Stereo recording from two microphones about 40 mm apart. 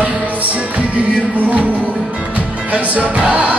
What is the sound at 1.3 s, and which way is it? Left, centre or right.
Music, right.